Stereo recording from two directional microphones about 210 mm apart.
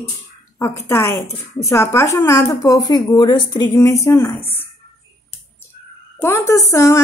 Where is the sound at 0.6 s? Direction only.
15° left (ahead or behind).